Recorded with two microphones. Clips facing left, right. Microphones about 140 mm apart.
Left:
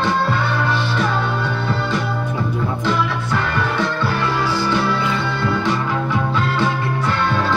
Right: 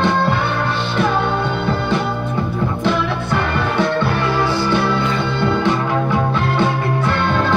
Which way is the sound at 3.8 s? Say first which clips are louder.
Right 4 dB; 55° right (ahead or behind).